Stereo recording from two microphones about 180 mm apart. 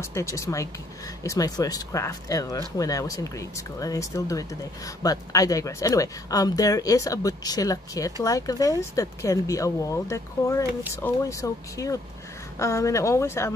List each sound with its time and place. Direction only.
0.0 s speech: 15° left (ahead or behind)